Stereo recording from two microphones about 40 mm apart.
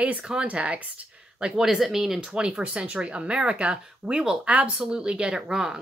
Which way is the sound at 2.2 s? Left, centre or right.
Right.